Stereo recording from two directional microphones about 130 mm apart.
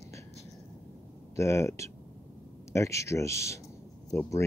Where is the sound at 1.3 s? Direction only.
20° left (ahead or behind).